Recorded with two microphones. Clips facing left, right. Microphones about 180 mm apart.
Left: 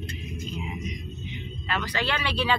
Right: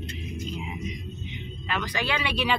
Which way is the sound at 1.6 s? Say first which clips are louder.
Even; 15° right (ahead or behind).